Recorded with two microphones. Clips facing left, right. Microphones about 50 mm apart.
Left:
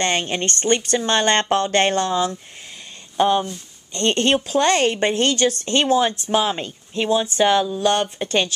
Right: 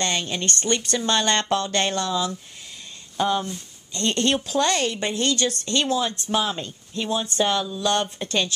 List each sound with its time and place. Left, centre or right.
0.0 s speech: left